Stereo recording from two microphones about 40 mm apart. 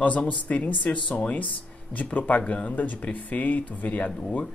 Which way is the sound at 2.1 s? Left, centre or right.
Left.